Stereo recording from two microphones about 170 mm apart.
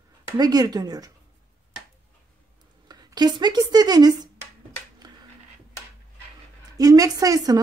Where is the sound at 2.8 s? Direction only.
25° right (ahead or behind).